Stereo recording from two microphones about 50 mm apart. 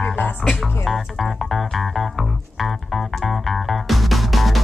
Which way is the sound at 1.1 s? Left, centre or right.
Centre.